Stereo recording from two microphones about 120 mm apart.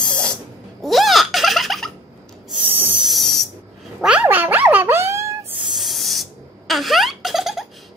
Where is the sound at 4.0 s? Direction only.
10° right (ahead or behind).